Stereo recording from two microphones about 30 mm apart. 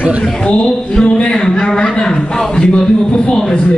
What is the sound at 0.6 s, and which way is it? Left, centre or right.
A man's voice, left.